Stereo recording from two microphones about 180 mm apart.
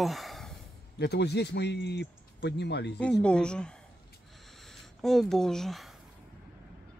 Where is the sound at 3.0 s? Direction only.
5° left (ahead or behind).